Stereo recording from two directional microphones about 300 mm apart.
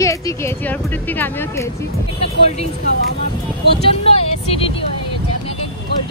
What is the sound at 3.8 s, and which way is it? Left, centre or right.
Speech, centre.